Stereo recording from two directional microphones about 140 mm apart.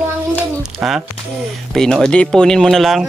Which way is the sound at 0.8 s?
5° right (ahead or behind).